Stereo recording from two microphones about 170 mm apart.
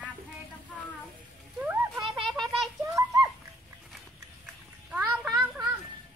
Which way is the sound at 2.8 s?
20° right (ahead or behind).